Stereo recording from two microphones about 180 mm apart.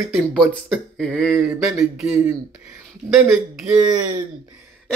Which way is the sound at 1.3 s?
15° right (ahead or behind).